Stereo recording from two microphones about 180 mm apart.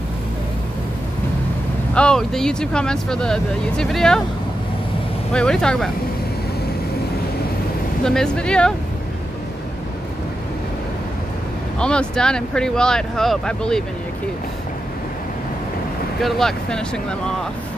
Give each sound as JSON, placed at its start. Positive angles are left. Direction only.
{"t": 2.0, "sound": "speech", "side_deg": 5}
{"t": 5.3, "sound": "speech", "side_deg": 5}
{"t": 8.0, "sound": "speech", "side_deg": 5}
{"t": 11.8, "sound": "speech", "side_deg": 5}
{"t": 16.2, "sound": "speech", "side_deg": 0}